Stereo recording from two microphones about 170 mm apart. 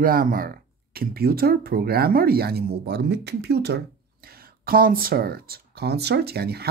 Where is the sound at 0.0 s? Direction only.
55° right (ahead or behind).